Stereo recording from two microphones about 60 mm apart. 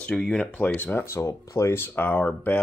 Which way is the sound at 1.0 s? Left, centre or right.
Left.